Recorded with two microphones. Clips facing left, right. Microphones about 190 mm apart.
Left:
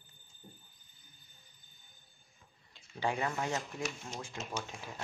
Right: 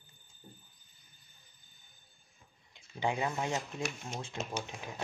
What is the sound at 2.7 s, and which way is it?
Speech, 20° right (ahead or behind).